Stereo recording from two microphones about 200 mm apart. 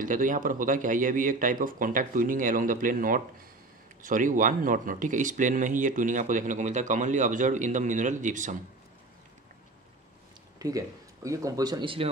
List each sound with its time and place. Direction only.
0.0 s speech: 40° right (ahead or behind)
10.6 s speech: 15° right (ahead or behind)